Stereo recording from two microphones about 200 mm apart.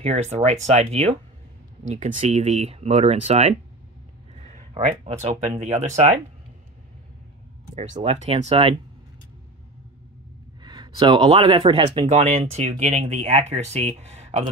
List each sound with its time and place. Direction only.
0.0 s speech: 30° right (ahead or behind)
7.7 s speech: 35° right (ahead or behind)
10.6 s speech: 20° right (ahead or behind)